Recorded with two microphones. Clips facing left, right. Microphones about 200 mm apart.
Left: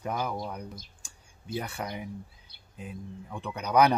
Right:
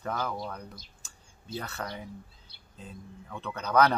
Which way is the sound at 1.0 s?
15° left (ahead or behind).